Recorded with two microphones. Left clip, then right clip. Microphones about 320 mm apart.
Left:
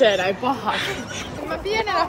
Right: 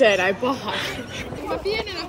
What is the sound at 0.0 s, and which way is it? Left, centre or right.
Speech, centre.